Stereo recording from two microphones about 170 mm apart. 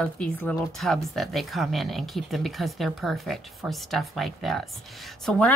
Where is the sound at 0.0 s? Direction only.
5° left (ahead or behind).